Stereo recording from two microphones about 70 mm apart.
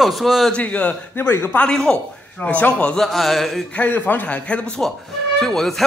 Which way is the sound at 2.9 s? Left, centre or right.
Centre.